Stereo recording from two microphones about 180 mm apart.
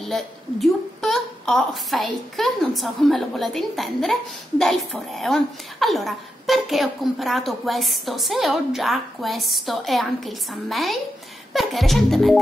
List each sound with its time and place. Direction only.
0.0 s a woman's voice: centre (ahead or behind)